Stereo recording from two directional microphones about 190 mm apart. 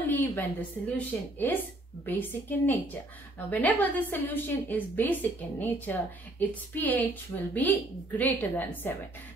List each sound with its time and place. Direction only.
0.1 s a woman's voice: 10° left (ahead or behind)